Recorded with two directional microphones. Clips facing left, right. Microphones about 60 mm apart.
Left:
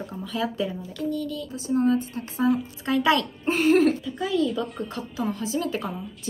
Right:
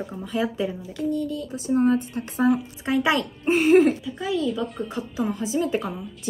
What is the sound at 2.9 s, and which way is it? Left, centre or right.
A woman's voice, centre.